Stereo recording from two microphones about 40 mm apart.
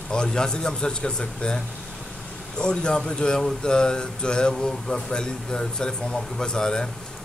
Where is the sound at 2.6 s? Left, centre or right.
Left.